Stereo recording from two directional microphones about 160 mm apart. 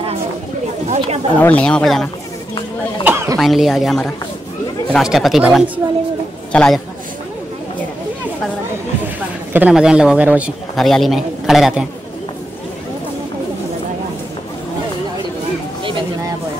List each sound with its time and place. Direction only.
0.8 s speech: 40° right (ahead or behind)
1.4 s speech: 10° left (ahead or behind)
3.0 s a sound: 10° right (ahead or behind)
3.3 s a man's voice: centre (ahead or behind)
9.5 s a man's voice: 10° right (ahead or behind)
15.8 s a sound: 30° right (ahead or behind)